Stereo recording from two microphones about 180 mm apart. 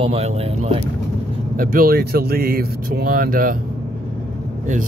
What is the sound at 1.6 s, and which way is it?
Speech, 55° right (ahead or behind).